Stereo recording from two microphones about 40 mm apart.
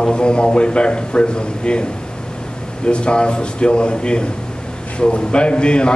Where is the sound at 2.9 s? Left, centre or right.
Left.